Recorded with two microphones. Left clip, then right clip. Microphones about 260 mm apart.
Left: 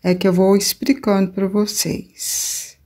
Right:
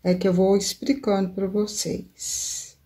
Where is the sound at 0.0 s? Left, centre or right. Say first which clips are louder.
Left 5 dB; left.